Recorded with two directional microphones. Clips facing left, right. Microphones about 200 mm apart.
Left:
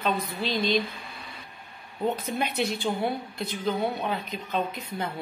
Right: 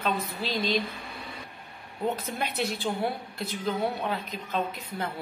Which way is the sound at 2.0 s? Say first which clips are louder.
Left 2 dB; centre (ahead or behind).